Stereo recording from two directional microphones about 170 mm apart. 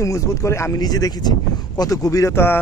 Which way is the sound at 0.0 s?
20° left (ahead or behind).